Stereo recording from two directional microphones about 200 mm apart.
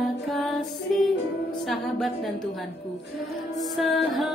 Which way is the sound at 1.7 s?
Centre (ahead or behind).